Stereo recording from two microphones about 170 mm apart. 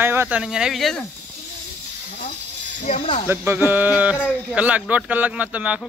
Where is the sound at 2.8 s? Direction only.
35° left (ahead or behind).